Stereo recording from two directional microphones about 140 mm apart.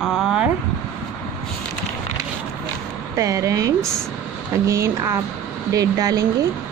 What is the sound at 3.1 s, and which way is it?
Speech, 25° right (ahead or behind).